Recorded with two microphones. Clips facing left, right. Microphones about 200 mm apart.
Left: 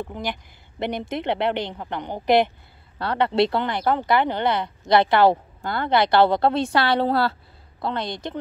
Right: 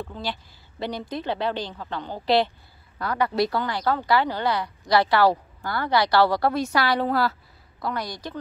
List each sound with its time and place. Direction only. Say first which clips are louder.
0.0 s speech: left 2 dB; 20° left (ahead or behind)
3.0 s speech: left 3 dB; 30° left (ahead or behind)